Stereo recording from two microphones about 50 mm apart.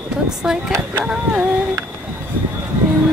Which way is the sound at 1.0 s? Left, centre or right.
Centre.